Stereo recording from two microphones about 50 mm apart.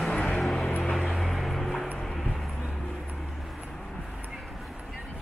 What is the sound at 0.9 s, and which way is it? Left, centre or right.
Vehicle, centre.